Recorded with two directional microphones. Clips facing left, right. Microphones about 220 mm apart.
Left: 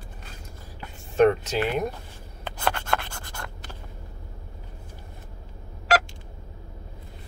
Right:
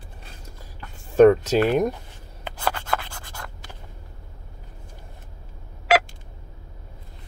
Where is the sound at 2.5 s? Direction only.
5° right (ahead or behind).